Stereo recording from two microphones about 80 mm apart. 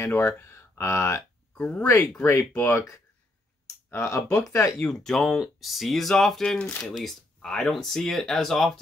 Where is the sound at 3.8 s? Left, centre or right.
Left.